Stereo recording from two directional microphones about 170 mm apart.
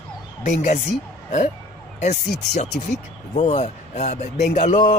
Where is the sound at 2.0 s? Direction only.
45° left (ahead or behind).